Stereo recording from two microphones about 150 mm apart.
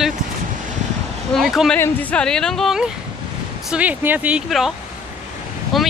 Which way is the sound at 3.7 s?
10° right (ahead or behind).